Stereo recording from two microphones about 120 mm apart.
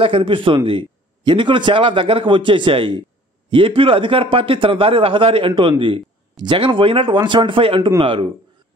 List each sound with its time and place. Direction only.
0.0 s a man's voice: 50° right (ahead or behind)